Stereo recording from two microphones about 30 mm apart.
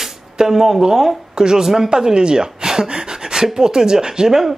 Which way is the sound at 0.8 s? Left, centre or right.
Centre.